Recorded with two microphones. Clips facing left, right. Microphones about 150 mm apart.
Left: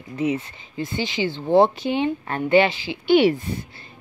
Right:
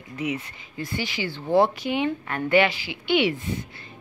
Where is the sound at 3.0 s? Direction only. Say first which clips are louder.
Left 6 dB; 40° left (ahead or behind).